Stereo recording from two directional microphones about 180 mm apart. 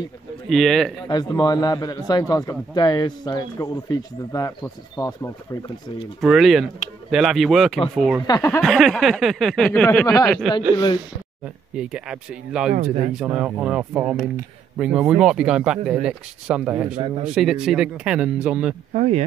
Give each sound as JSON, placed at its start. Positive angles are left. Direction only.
{"t": 0.5, "sound": "speech", "side_deg": 0}
{"t": 1.0, "sound": "a man's voice", "side_deg": 20}
{"t": 6.2, "sound": "speech", "side_deg": 0}
{"t": 8.3, "sound": "speech", "side_deg": 20}
{"t": 8.6, "sound": "speech", "side_deg": 0}
{"t": 10.2, "sound": "speech", "side_deg": 0}
{"t": 11.7, "sound": "speech", "side_deg": -5}
{"t": 12.7, "sound": "speech", "side_deg": -45}
{"t": 13.1, "sound": "speech", "side_deg": -5}
{"t": 18.9, "sound": "speech", "side_deg": -40}